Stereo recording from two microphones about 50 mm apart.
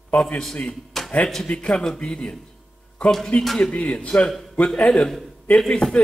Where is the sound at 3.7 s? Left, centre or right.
Left.